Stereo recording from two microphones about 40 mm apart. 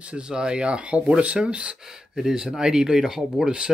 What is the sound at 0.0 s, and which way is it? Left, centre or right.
Speech, right.